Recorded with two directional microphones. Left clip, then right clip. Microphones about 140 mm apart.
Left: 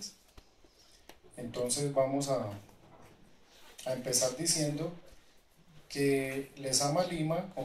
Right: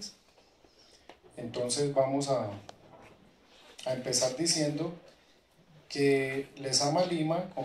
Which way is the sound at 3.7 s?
45° left (ahead or behind).